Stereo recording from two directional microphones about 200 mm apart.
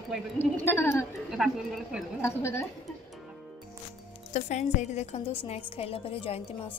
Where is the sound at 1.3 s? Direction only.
Centre (ahead or behind).